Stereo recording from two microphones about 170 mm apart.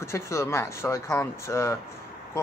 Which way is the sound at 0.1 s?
15° left (ahead or behind).